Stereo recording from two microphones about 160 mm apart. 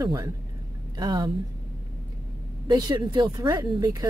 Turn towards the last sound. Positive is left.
turn(degrees=-25)  # may be behind; listen again after turning